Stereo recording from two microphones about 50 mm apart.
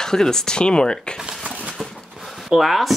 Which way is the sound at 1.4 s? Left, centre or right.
Right.